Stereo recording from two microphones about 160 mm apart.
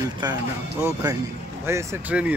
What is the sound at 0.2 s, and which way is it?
Speech, 25° right (ahead or behind).